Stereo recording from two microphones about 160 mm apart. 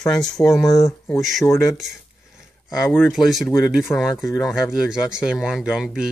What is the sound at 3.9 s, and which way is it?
Speech, 15° left (ahead or behind).